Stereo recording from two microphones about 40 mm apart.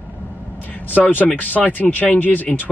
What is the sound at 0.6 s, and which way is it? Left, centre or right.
Speech, left.